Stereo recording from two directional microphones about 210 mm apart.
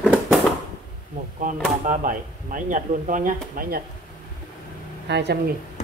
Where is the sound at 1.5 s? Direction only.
40° right (ahead or behind).